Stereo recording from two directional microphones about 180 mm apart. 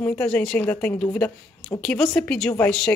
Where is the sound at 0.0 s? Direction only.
5° left (ahead or behind).